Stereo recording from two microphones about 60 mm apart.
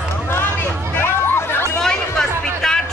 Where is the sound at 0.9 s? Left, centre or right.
Left.